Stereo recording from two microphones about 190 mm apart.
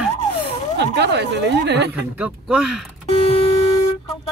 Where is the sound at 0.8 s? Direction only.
65° right (ahead or behind).